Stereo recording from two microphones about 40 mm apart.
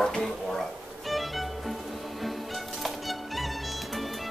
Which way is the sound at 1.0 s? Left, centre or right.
Centre.